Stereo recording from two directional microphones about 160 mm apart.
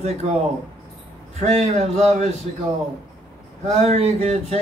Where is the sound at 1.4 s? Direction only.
45° right (ahead or behind).